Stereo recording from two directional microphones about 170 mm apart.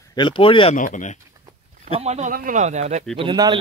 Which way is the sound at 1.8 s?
40° right (ahead or behind).